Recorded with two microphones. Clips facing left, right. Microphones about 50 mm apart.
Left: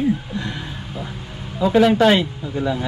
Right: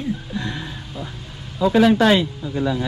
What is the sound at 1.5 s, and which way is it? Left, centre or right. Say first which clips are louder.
Speech: even; left.